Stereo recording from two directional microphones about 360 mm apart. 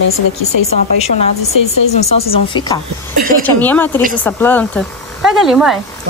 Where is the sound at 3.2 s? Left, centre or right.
Right.